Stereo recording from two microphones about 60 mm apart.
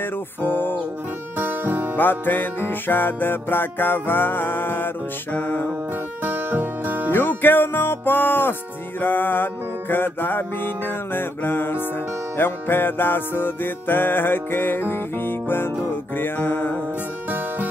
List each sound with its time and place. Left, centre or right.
0.4 s music: left
1.4 s music: right
2.0 s music: left
6.2 s music: right
7.1 s music: left